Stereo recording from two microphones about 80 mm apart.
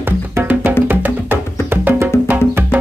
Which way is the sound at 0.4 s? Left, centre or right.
Right.